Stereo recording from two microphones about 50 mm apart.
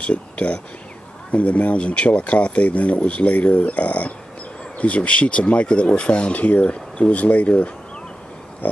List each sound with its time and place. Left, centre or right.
0.0 s speech: left